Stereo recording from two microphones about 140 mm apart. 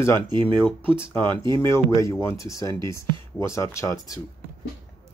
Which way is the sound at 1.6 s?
20° left (ahead or behind).